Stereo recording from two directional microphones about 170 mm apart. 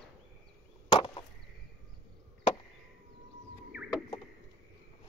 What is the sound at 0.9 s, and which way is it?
Chop, 30° left (ahead or behind).